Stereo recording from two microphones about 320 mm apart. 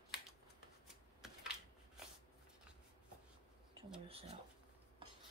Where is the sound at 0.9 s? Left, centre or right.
Centre.